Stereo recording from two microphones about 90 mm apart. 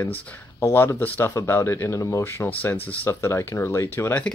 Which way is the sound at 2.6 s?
20° left (ahead or behind).